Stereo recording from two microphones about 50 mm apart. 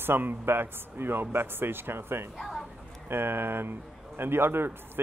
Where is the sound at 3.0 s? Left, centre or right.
Right.